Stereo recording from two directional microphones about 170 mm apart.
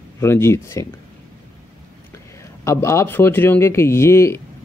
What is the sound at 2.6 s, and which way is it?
Speech, 15° left (ahead or behind).